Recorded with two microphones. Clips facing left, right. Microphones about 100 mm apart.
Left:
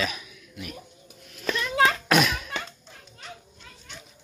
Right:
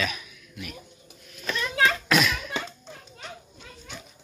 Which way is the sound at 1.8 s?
45° left (ahead or behind).